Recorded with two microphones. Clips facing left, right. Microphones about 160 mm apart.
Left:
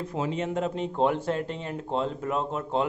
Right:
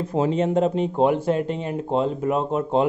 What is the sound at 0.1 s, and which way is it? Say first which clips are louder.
Speech: right 9 dB; 35° right (ahead or behind).